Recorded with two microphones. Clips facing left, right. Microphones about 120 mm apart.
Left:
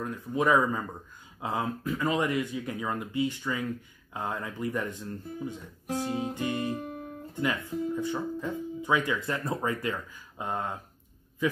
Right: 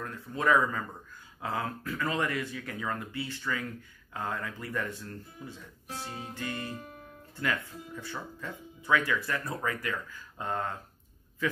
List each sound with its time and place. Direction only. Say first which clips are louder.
0.0 s a man's voice: left 3 dB; 15° left (ahead or behind)